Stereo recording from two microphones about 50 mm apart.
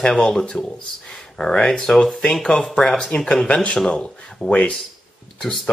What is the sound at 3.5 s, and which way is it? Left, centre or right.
Speech, left.